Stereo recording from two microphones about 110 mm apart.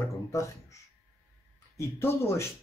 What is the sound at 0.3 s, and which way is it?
Speech, 30° left (ahead or behind).